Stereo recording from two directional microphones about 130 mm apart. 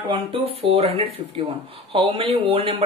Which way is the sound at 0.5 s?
50° right (ahead or behind).